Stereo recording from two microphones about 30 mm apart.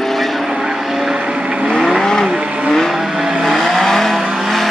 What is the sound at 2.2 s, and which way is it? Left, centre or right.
Vehicle, right.